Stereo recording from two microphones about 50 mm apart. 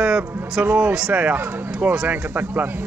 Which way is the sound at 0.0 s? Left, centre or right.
Right.